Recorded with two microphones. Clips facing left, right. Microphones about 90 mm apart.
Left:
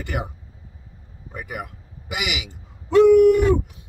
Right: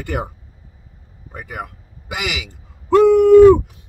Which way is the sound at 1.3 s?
40° right (ahead or behind).